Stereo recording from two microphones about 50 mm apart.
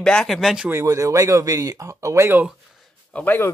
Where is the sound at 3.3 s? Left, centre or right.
Left.